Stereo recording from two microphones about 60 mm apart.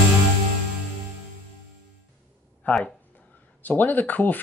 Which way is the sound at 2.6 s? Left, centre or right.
Left.